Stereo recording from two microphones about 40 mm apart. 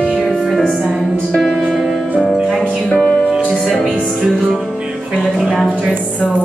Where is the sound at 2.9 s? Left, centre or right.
Left.